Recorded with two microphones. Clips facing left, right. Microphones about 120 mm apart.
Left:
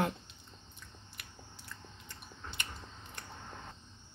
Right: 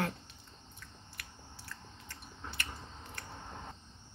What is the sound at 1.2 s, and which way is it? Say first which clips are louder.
Biting: right 2 dB; 20° left (ahead or behind).